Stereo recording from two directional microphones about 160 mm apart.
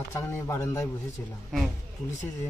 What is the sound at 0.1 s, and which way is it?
Speech, 15° left (ahead or behind).